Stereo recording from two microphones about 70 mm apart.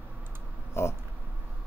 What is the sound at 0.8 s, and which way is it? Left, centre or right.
Speech, left.